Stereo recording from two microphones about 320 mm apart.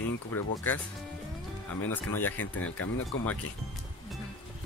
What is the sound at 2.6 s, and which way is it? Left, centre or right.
Speech, left.